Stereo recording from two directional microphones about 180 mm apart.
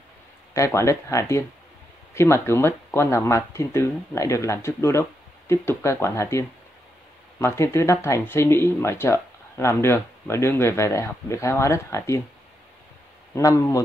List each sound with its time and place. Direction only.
0.6 s speech: 15° left (ahead or behind)
13.3 s speech: 15° left (ahead or behind)